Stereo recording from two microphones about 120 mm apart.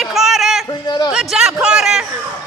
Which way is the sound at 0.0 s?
Centre (ahead or behind).